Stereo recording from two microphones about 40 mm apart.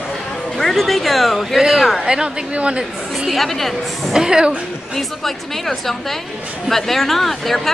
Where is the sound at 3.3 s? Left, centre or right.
Centre.